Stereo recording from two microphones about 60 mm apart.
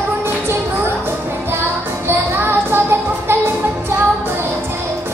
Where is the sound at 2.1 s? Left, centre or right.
Right.